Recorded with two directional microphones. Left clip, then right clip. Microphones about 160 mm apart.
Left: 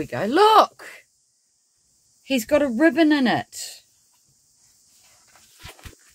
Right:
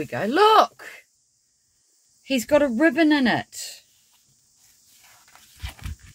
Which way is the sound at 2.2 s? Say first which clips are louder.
Right 1 dB; centre (ahead or behind).